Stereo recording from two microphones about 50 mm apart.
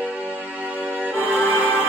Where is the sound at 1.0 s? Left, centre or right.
Right.